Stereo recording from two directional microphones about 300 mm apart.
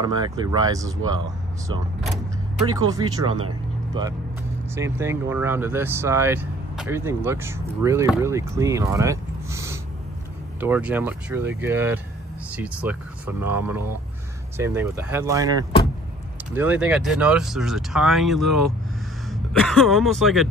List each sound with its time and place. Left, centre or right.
0.0 s speech: centre
2.6 s speech: centre
3.3 s speech: right
4.7 s speech: centre
16.5 s speech: centre